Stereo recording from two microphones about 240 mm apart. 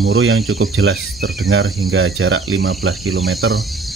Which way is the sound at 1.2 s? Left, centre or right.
Right.